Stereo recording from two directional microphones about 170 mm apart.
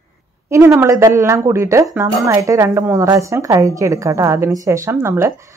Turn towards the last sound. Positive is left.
turn(degrees=-15)  # may be behind; listen again after turning